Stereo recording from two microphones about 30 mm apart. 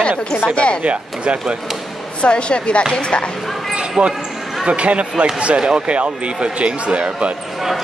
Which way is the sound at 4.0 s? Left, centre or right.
Right.